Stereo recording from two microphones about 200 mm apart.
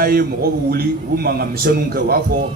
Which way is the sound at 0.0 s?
45° right (ahead or behind).